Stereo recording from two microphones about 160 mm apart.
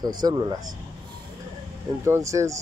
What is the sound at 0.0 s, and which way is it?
Speech, 25° right (ahead or behind).